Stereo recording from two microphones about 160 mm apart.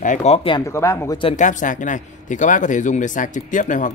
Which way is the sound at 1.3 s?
50° left (ahead or behind).